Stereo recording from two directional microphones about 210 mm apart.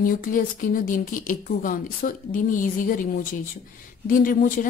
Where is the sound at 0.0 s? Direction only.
40° left (ahead or behind).